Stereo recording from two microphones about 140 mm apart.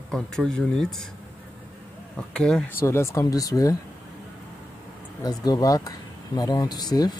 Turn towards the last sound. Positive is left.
turn(degrees=30)  # may be behind; listen again after turning